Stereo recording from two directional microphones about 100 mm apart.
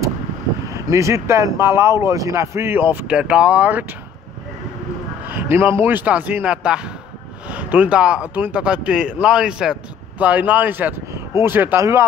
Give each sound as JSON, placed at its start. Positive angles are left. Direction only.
{"t": 0.7, "sound": "speech", "side_deg": -30}
{"t": 5.3, "sound": "speech", "side_deg": -25}